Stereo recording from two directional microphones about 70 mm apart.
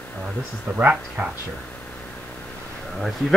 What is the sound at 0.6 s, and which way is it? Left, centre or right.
Speech, right.